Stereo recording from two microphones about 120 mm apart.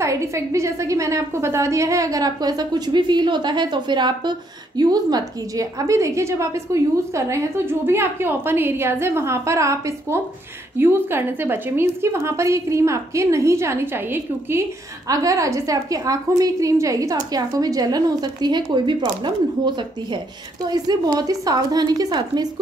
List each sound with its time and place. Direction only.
0.0 s a woman's voice: 25° right (ahead or behind)